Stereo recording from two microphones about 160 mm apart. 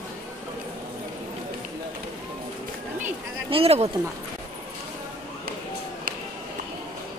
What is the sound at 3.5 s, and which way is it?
Speech, 40° right (ahead or behind).